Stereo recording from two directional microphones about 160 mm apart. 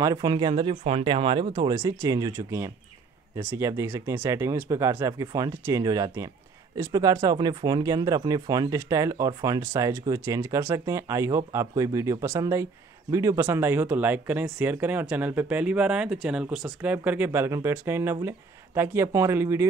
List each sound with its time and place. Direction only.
0.0 s speech: 25° right (ahead or behind)